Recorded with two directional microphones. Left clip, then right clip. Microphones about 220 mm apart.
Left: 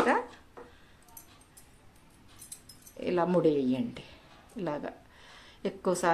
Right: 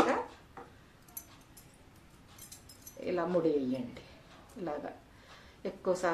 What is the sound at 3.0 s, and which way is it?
Speech, 50° left (ahead or behind).